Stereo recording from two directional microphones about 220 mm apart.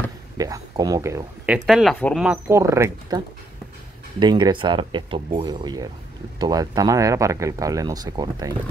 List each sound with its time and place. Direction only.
0.4 s speech: 15° right (ahead or behind); by 2.2 s 5° left (ahead or behind)
2.2 s speech: 10° right (ahead or behind)
4.2 s speech: 20° right (ahead or behind)